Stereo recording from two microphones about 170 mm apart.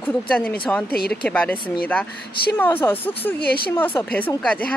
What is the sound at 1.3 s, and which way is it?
Speech, 5° left (ahead or behind).